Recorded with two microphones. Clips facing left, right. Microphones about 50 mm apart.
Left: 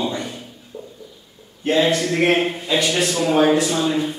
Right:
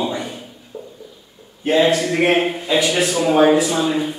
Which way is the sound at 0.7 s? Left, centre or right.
Right.